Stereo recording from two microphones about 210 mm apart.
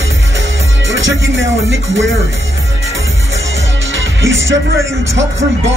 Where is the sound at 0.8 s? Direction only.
65° right (ahead or behind).